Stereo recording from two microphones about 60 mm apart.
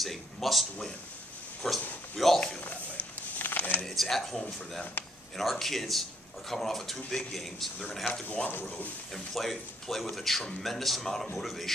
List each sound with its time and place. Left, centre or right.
0.0 s speech: centre
3.3 s a sound: left
3.8 s speech: centre
8.1 s speech: left
9.1 s speech: centre